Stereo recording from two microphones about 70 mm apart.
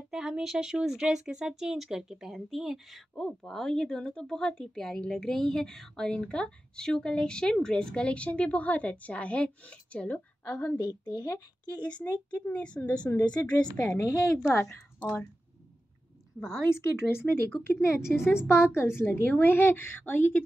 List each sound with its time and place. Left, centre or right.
0.1 s speech: centre; by 10.8 s left
11.1 s speech: left
11.7 s speech: left
13.9 s a woman's voice: left
16.3 s a woman's voice: centre
17.1 s a woman's voice: left